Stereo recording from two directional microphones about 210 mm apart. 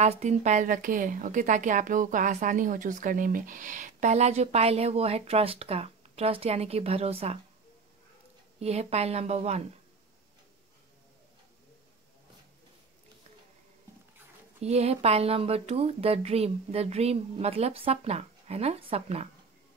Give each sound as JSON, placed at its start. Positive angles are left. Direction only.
{"t": 0.0, "sound": "speech", "side_deg": -30}
{"t": 8.5, "sound": "speech", "side_deg": -30}
{"t": 14.6, "sound": "speech", "side_deg": -30}